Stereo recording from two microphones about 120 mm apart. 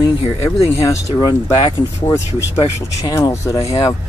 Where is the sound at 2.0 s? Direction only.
20° left (ahead or behind).